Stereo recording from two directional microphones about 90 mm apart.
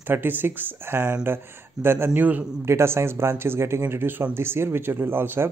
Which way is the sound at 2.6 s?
30° right (ahead or behind).